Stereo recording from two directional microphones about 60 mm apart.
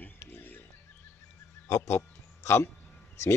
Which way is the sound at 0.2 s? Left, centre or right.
Left.